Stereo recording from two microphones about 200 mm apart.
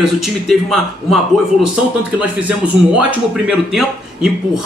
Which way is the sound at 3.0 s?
5° right (ahead or behind).